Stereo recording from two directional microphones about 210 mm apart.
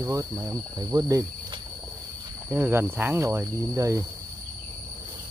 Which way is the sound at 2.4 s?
10° right (ahead or behind).